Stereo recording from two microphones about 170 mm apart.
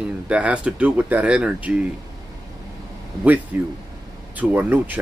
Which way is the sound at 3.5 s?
10° right (ahead or behind).